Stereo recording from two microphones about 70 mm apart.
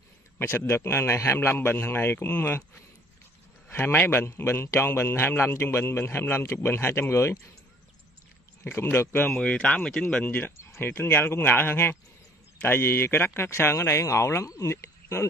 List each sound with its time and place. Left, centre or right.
0.4 s a man's voice: left
3.6 s a man's voice: left
4.2 s a man's voice: left
8.6 s a man's voice: left
9.4 s speech: centre
10.2 s speech: left
10.6 s a sound: left
10.9 s a man's voice: left